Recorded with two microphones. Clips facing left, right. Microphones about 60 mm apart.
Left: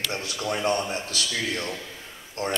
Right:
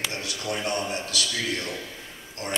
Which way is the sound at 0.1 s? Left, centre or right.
Left.